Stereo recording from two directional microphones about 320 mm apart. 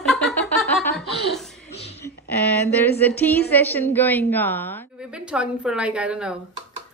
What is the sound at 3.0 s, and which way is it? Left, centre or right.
A woman's voice, centre.